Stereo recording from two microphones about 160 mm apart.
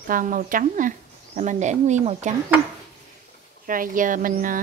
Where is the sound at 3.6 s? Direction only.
55° right (ahead or behind).